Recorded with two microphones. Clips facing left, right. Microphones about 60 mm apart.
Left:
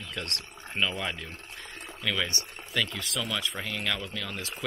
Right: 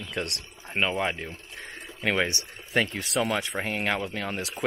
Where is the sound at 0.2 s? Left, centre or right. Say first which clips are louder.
Right 6 dB; right.